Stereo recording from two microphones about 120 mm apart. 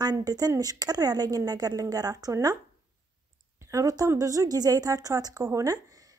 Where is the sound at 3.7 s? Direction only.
30° right (ahead or behind).